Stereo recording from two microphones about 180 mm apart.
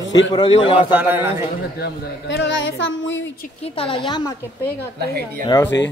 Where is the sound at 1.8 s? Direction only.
90° left.